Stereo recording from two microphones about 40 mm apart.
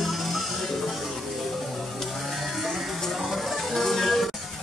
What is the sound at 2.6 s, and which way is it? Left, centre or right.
Music, centre.